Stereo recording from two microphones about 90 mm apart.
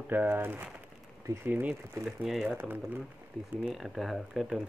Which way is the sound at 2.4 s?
20° right (ahead or behind).